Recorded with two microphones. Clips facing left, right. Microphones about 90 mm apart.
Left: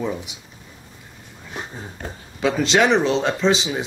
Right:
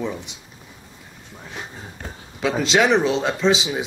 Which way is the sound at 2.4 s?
Centre (ahead or behind).